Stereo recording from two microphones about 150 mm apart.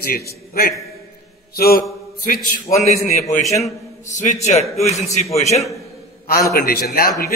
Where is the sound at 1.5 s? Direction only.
90° left.